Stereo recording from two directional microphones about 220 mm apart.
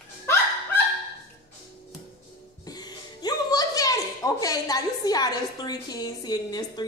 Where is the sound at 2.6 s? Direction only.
15° left (ahead or behind).